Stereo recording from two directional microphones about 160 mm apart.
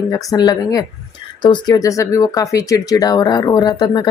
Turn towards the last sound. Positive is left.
turn(degrees=25)  # may be behind; listen again after turning